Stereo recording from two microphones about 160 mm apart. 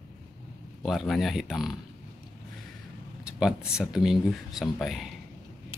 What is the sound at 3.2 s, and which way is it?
Speech, 5° right (ahead or behind).